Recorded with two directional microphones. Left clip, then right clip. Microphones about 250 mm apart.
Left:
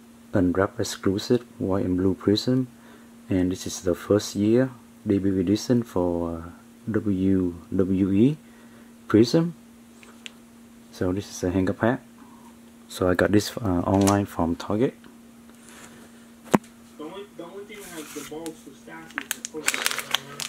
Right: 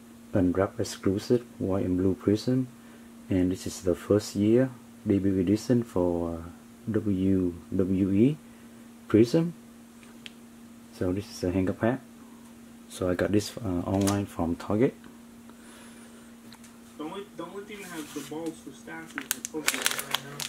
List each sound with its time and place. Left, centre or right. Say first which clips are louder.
0.3 s speech: left 3 dB; centre
11.0 s speech: left 3 dB; centre
19.1 s crumpling: left 3 dB; centre